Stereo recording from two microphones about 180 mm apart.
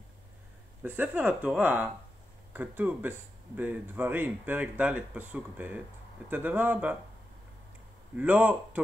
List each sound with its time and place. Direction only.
0.8 s speech: 10° right (ahead or behind)
8.2 s speech: 10° right (ahead or behind)